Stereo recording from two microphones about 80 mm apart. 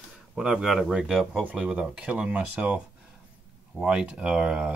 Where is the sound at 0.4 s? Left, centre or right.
Centre.